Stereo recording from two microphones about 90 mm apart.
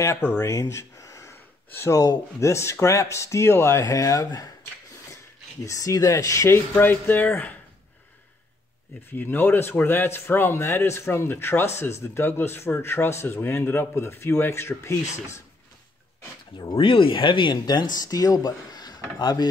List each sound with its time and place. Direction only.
0.4 s speech: 35° left (ahead or behind)
5.6 s speech: 40° left (ahead or behind)
6.7 s speech: 20° left (ahead or behind)
9.1 s speech: 20° left (ahead or behind)
16.5 s speech: 65° left (ahead or behind); by 19.4 s 50° left (ahead or behind)